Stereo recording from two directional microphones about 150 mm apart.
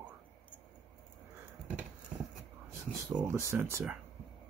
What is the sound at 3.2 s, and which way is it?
Speech, 20° right (ahead or behind).